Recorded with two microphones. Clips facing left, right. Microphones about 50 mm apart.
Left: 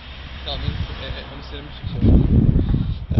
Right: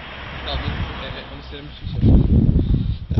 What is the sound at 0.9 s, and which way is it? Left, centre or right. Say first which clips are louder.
Speech: right 2 dB; centre.